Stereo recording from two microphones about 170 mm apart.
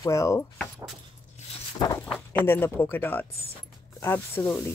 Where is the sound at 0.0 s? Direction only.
20° left (ahead or behind).